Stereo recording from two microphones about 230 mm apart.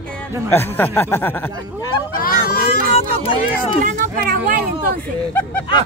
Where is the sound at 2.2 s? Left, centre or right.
Left.